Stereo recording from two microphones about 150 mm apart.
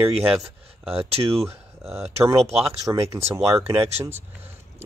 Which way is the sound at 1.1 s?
40° right (ahead or behind).